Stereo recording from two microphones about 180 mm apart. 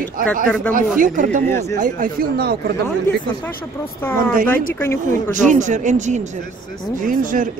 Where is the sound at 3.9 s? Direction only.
10° left (ahead or behind).